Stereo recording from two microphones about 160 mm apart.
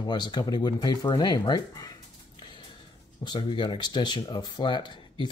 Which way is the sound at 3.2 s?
30° left (ahead or behind).